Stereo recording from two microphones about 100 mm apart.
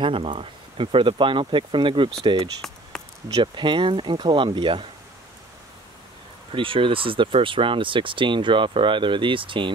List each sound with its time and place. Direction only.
0.0 s speech: 60° right (ahead or behind)
2.9 s a sound: 5° left (ahead or behind)
3.3 s speech: 45° right (ahead or behind)
6.5 s speech: 60° right (ahead or behind)